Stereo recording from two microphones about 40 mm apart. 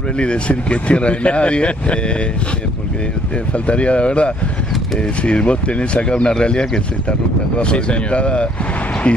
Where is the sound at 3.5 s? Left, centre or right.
Left.